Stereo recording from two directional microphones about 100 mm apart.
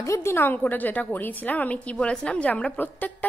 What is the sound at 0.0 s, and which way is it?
A woman's voice, 30° left (ahead or behind).